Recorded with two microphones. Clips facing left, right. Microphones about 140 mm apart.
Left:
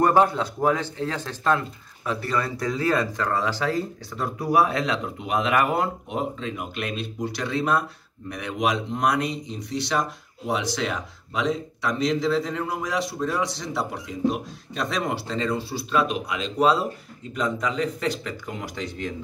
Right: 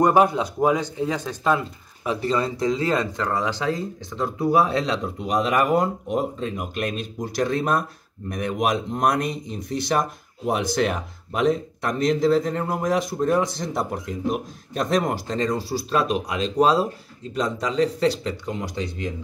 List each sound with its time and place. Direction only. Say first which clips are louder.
0.0 s speech: right 2 dB; 15° right (ahead or behind)